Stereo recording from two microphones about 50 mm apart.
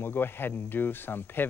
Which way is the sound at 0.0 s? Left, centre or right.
Left.